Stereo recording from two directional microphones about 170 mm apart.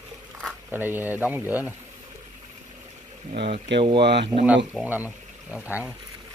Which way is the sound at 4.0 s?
80° right.